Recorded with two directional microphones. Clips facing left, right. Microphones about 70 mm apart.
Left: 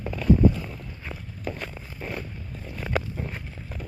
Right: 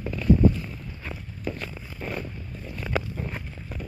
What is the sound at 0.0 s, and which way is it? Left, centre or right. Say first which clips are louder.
Boat: even; left.